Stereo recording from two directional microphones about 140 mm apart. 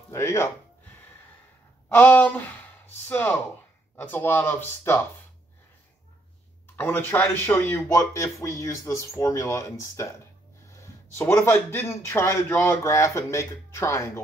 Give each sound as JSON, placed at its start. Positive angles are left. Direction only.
{"t": 0.1, "sound": "speech", "side_deg": 20}
{"t": 1.9, "sound": "speech", "side_deg": 10}
{"t": 6.8, "sound": "a man's voice", "side_deg": 15}